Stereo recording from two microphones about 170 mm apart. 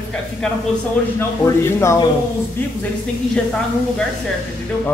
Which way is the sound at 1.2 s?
15° left (ahead or behind).